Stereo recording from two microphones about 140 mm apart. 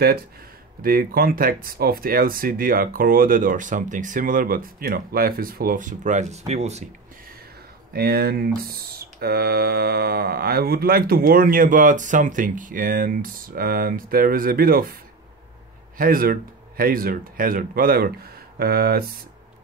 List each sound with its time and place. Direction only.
0.8 s speech: 90° right; by 6.9 s 50° right (ahead or behind)
7.9 s speech: 90° right
16.0 s speech: 90° right